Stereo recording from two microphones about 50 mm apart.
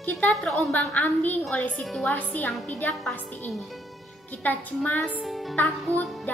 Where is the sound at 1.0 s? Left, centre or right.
Left.